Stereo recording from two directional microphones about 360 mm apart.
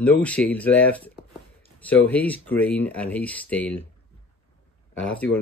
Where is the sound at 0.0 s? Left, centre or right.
Centre.